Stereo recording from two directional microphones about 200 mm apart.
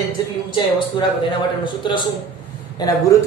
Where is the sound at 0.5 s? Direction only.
25° left (ahead or behind).